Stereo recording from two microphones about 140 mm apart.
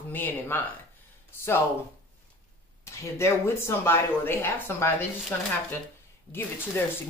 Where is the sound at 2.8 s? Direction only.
20° left (ahead or behind).